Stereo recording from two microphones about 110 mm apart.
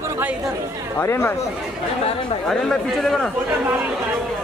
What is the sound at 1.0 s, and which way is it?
Speech, 20° left (ahead or behind).